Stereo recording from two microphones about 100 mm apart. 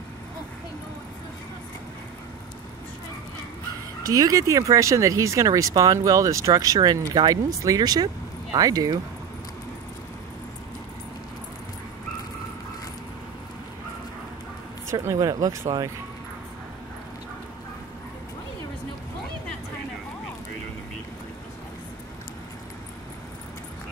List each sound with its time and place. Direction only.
4.1 s speech: 35° right (ahead or behind)
14.9 s speech: 25° right (ahead or behind)
15.1 s speech: 40° right (ahead or behind)